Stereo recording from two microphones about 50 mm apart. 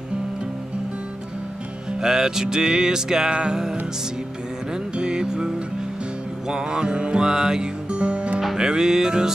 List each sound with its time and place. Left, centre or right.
2.0 s music: centre
4.9 s music: centre
6.5 s music: centre